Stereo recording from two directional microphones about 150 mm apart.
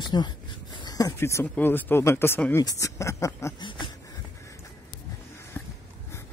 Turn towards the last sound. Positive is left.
turn(degrees=15)  # may be behind; listen again after turning